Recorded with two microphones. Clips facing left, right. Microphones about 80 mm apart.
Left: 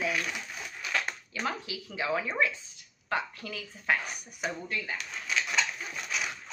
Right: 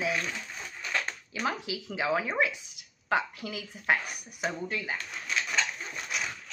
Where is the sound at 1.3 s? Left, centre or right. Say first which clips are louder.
Right 3 dB; centre.